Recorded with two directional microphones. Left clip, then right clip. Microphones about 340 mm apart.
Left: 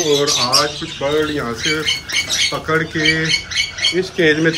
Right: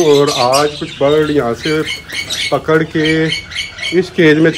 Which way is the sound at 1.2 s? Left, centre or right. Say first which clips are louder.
Right 6 dB; right.